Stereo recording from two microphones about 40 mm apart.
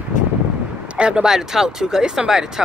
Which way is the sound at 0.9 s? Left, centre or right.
Right.